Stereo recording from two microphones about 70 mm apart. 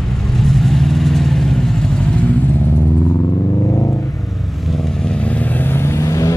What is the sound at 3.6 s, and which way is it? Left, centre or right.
Vehicle, left.